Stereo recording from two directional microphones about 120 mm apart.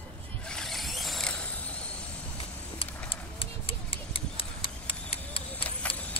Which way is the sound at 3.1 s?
50° left (ahead or behind).